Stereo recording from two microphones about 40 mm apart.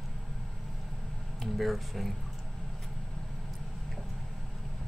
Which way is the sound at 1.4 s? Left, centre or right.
Centre.